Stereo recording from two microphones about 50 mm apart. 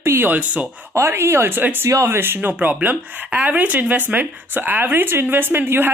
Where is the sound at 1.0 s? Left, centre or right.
Right.